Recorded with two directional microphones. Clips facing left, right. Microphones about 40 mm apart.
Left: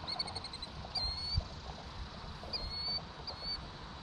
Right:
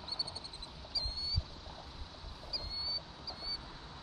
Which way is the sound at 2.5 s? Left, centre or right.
Centre.